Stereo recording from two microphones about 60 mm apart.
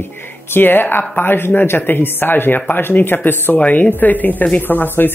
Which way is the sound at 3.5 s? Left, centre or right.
Left.